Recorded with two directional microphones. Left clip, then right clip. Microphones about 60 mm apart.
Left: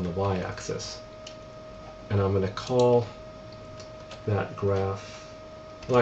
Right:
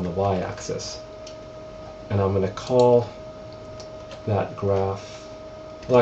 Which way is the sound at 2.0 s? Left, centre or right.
Left.